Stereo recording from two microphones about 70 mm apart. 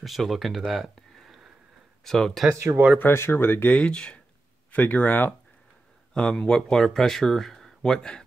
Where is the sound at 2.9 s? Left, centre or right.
Left.